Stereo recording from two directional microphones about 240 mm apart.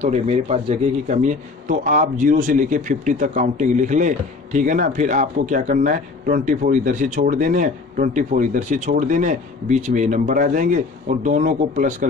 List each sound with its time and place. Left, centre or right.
0.0 s a man's voice: right